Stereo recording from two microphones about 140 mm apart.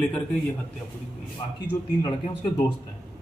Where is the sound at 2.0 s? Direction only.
30° left (ahead or behind).